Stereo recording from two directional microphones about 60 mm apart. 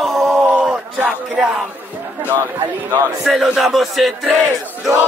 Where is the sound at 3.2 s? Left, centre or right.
Centre.